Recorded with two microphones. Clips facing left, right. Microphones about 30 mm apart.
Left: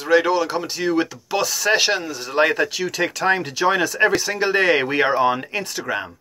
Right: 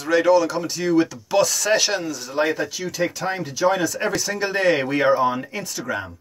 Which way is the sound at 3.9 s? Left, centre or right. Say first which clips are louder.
Left 5 dB; left.